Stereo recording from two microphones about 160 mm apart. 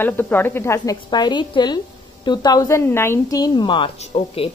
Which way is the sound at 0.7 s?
25° left (ahead or behind).